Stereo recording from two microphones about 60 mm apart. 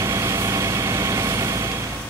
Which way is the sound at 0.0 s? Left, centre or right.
Right.